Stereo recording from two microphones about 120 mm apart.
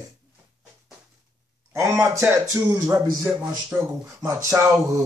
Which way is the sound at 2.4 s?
30° right (ahead or behind).